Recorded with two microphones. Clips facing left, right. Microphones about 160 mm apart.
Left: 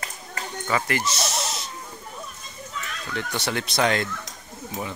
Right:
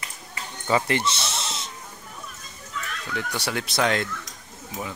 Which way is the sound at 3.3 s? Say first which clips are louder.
Left 1 dB; 5° right (ahead or behind).